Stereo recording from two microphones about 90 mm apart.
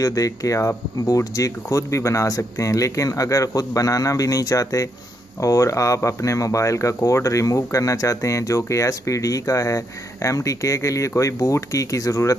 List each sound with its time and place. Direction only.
0.0 s speech: 40° left (ahead or behind)